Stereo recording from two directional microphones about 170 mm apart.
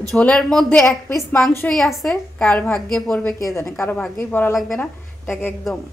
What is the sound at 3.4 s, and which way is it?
A woman's voice, 15° left (ahead or behind).